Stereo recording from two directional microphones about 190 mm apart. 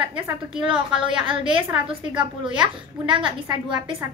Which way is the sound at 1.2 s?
25° right (ahead or behind).